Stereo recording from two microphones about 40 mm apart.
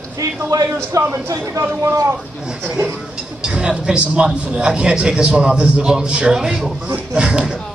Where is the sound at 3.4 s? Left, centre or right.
Right.